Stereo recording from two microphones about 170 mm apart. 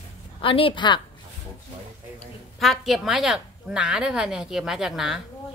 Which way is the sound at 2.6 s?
Centre (ahead or behind).